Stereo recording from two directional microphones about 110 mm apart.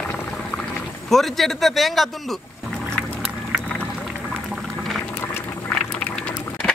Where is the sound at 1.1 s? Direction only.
Centre (ahead or behind).